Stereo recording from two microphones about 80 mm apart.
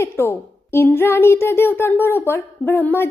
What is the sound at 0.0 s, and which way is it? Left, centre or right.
A woman's voice, left.